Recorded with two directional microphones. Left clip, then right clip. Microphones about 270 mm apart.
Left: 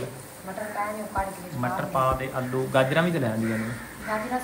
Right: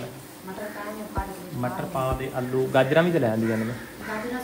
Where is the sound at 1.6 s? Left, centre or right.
Centre.